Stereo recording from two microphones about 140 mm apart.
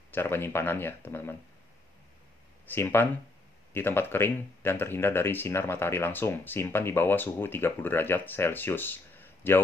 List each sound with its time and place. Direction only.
0.1 s speech: 15° left (ahead or behind)
2.6 s speech: 15° left (ahead or behind)